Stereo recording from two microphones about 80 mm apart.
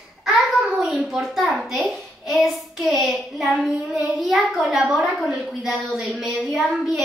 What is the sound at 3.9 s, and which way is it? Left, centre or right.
A child's voice, centre.